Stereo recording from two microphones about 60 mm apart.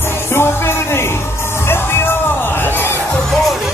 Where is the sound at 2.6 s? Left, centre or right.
Left.